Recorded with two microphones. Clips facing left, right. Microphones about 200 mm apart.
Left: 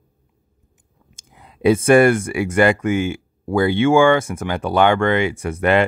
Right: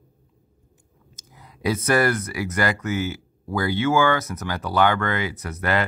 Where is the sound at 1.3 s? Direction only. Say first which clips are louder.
Left 9 dB; 25° left (ahead or behind).